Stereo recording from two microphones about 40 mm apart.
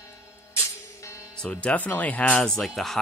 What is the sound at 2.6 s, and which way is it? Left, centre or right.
Speech, centre.